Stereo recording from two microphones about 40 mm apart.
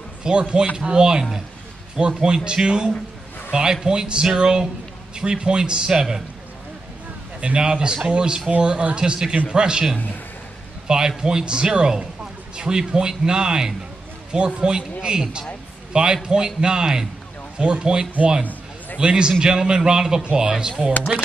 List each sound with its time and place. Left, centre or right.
0.2 s a man's voice: right
2.2 s a man's voice: centre
7.3 s a man's voice: right
10.9 s a man's voice: centre